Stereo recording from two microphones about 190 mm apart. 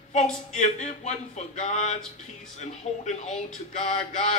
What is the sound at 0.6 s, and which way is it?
Speech, 40° left (ahead or behind).